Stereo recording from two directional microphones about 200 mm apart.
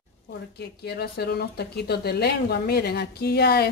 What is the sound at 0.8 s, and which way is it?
Speech, 55° left (ahead or behind).